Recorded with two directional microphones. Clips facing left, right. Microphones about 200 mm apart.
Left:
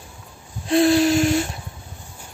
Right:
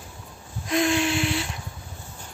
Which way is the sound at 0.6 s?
35° left (ahead or behind).